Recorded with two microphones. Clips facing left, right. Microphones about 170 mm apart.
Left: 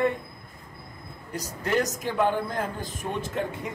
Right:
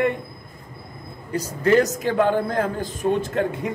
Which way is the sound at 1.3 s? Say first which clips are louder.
Right 9 dB; 90° right.